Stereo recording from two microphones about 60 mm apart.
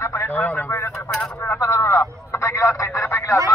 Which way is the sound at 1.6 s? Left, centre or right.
Left.